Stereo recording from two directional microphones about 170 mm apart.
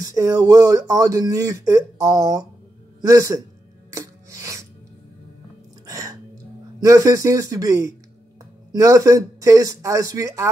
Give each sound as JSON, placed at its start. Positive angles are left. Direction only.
{"t": 0.0, "sound": "a man's voice", "side_deg": -20}
{"t": 3.9, "sound": "filing", "side_deg": -20}
{"t": 5.9, "sound": "music", "side_deg": -20}
{"t": 6.8, "sound": "speech", "side_deg": -20}